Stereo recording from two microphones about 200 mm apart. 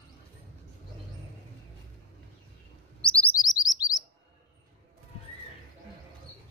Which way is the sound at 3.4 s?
20° left (ahead or behind).